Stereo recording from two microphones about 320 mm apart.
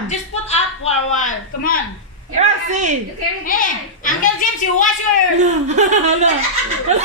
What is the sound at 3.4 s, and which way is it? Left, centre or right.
A woman's voice, left.